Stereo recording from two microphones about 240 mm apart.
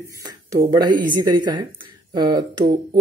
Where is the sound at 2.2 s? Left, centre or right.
Centre.